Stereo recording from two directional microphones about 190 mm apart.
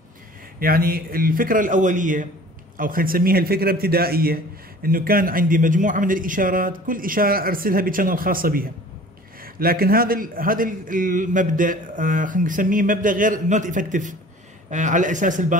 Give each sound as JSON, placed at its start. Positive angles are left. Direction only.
{"t": 0.6, "sound": "a man's voice", "side_deg": -50}